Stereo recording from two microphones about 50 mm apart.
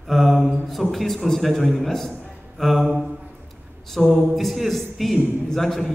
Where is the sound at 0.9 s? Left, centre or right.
Centre.